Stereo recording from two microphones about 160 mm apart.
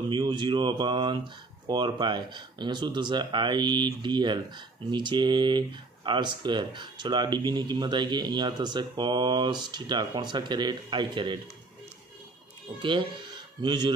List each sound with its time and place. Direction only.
0.1 s speech: 30° right (ahead or behind)
12.7 s speech: 30° right (ahead or behind)